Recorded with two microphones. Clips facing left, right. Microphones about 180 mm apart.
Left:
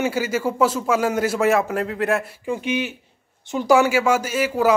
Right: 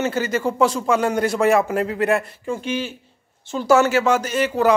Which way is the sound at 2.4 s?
15° left (ahead or behind).